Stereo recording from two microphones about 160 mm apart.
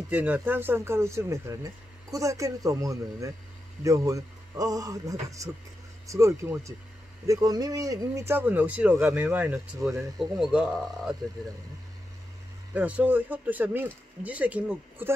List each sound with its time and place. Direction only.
0.1 s speech: 10° right (ahead or behind)
12.7 s speech: 10° right (ahead or behind)